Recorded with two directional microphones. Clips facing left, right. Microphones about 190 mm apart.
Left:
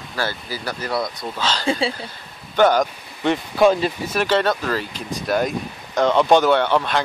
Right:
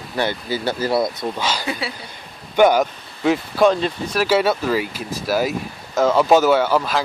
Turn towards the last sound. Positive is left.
turn(degrees=-5)  # may be behind; listen again after turning